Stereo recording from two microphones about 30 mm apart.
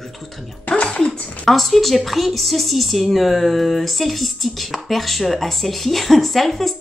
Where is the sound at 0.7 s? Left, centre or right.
Left.